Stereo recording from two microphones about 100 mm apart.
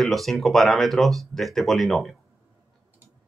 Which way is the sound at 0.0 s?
Centre (ahead or behind).